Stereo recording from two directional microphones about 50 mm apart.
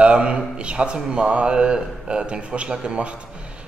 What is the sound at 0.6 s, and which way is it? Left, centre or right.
Speech, right.